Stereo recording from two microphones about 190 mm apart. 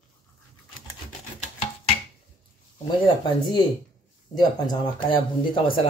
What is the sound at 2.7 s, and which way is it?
Speech, 25° left (ahead or behind).